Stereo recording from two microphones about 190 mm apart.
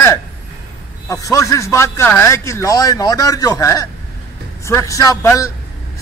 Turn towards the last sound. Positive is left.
turn(degrees=15)  # may be behind; listen again after turning